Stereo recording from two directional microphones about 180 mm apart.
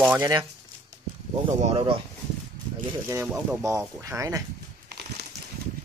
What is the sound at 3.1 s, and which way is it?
Speech, 15° right (ahead or behind).